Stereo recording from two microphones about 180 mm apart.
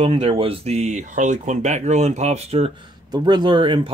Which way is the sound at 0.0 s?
30° right (ahead or behind).